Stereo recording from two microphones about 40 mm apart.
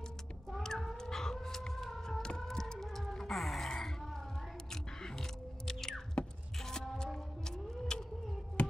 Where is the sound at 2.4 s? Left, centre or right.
Centre.